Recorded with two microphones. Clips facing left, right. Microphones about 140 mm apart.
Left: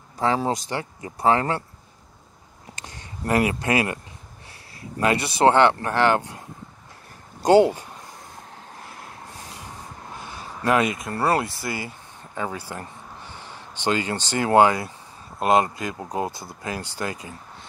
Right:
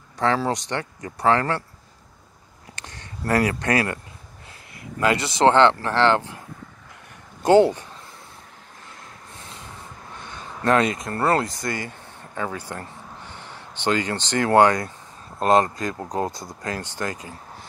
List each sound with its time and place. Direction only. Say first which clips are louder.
0.2 s speech: right 1 dB; 10° left (ahead or behind)
2.8 s speech: even; 15° left (ahead or behind)
5.0 s speech: even; 20° left (ahead or behind)
7.4 s speech: even; 15° left (ahead or behind)
10.1 s a sound: even; 10° left (ahead or behind)
11.2 s speech: right 1 dB; 20° left (ahead or behind)
11.6 s speech: right 2 dB; 10° left (ahead or behind)